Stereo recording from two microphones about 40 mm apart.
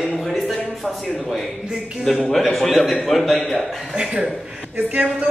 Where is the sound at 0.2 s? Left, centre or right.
Centre.